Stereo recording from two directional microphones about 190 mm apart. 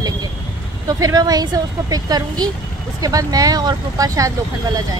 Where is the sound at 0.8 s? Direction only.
20° right (ahead or behind).